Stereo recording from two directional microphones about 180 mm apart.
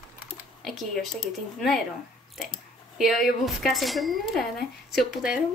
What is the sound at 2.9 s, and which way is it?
Speech, centre (ahead or behind).